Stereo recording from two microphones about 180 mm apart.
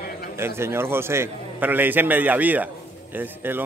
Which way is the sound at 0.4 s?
15° right (ahead or behind).